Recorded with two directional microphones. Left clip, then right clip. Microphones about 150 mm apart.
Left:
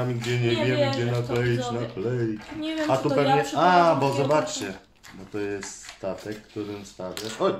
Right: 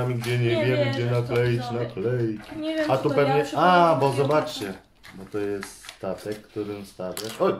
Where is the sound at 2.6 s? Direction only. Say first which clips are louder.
Right 3 dB; 25° left (ahead or behind).